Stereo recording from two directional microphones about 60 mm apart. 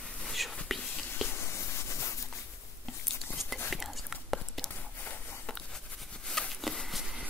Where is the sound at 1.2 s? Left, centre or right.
Left.